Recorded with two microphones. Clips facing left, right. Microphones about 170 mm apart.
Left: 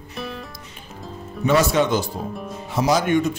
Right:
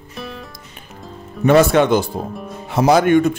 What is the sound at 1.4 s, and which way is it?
Speech, 60° right (ahead or behind).